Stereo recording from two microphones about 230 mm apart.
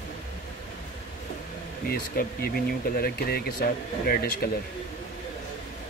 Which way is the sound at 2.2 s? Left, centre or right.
Left.